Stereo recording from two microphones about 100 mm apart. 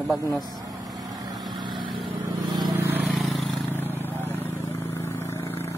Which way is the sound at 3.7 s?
20° left (ahead or behind).